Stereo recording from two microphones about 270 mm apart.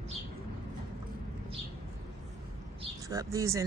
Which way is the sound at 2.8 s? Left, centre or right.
Centre.